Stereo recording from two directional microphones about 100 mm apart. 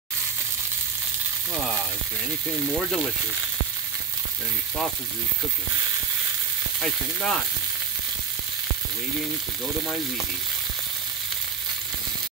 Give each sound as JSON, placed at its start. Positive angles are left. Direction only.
{"t": 6.8, "sound": "frying", "side_deg": 0}